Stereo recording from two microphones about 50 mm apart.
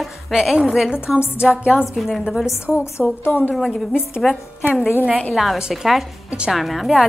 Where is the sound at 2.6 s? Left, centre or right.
Left.